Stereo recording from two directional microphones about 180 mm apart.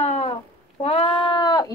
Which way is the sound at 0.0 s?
35° left (ahead or behind).